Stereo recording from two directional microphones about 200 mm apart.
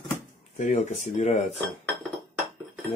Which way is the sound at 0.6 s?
40° left (ahead or behind).